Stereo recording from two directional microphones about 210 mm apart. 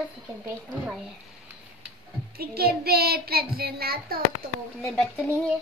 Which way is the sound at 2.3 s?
45° right (ahead or behind).